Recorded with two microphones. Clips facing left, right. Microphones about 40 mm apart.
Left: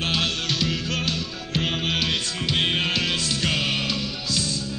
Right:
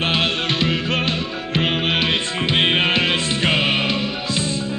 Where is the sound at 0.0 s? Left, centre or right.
Right.